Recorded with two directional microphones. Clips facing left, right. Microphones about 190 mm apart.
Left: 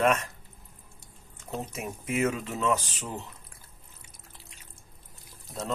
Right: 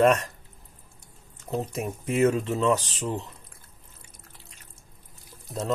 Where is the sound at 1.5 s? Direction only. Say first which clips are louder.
Right 5 dB; 35° right (ahead or behind).